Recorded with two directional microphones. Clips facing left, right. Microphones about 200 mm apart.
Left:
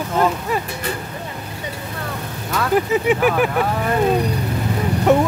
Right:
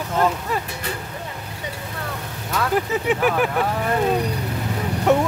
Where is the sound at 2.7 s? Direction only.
10° left (ahead or behind).